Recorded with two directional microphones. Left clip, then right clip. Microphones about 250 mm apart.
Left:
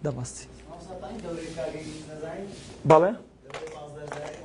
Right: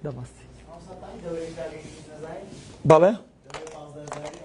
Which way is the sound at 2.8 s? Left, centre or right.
Right.